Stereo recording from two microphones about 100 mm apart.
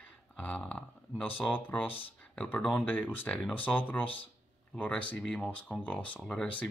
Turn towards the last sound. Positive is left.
turn(degrees=5)  # may be behind; listen again after turning